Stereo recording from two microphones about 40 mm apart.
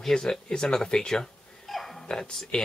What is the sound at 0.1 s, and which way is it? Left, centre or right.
Speech, centre.